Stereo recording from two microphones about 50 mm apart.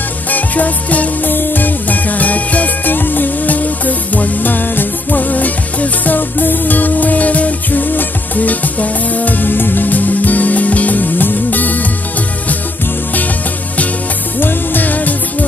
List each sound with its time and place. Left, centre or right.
0.3 s music: left
14.4 s music: left